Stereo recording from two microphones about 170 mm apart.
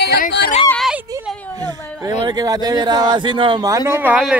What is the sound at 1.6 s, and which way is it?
Speech, 25° right (ahead or behind).